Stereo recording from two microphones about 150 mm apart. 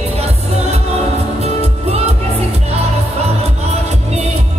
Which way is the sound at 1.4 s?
45° right (ahead or behind).